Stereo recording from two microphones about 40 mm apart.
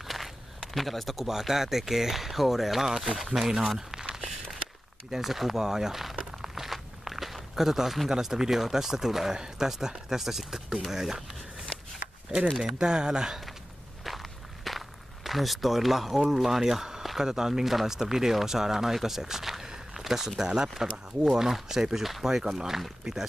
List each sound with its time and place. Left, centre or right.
0.0 s speech: centre
4.0 s a sound: centre
5.1 s speech: centre
6.3 s walk: centre
8.1 s speech: centre
12.7 s speech: centre
14.0 s walk: centre
16.3 s speech: centre